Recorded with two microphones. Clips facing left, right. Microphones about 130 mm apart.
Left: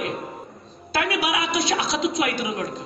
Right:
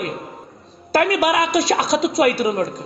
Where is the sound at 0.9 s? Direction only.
45° right (ahead or behind).